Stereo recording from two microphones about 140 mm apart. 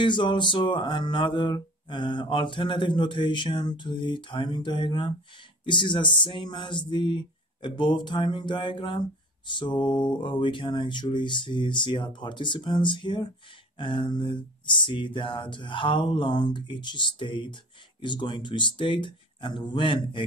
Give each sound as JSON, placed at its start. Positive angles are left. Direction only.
{"t": 0.0, "sound": "music", "side_deg": 35}